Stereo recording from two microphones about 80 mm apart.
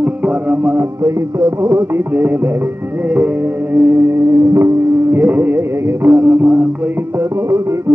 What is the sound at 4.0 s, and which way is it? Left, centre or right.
Music, right.